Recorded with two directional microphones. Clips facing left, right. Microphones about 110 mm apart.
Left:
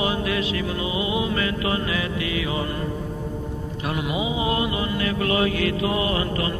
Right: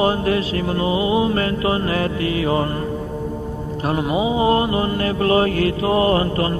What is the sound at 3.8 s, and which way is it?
Mantra, 35° right (ahead or behind).